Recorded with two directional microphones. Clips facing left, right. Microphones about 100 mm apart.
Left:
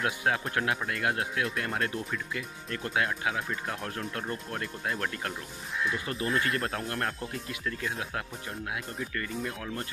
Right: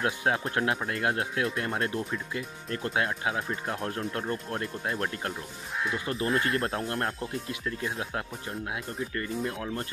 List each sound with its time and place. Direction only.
0.0 s speech: 30° right (ahead or behind)